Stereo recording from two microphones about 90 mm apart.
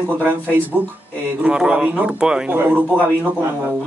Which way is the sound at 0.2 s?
20° right (ahead or behind).